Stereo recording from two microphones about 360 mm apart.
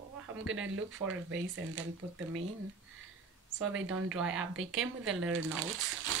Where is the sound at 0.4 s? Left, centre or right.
Right.